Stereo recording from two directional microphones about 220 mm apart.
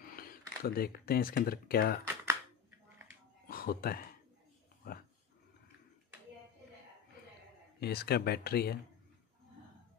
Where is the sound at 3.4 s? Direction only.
40° left (ahead or behind).